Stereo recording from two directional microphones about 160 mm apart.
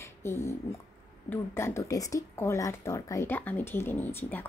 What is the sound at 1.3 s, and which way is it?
Speech, 15° left (ahead or behind).